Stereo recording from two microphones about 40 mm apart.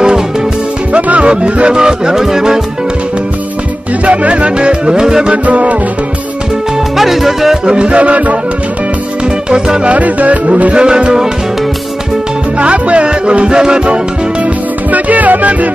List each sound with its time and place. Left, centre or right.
0.9 s music: right; by 2.6 s centre
4.0 s music: right; by 5.3 s centre
5.3 s music: right
7.0 s music: centre
7.6 s music: right
9.8 s music: right
12.5 s music: right
14.4 s music: right